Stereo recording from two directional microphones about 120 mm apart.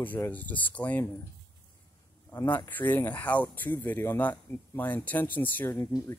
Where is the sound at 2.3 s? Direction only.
20° left (ahead or behind).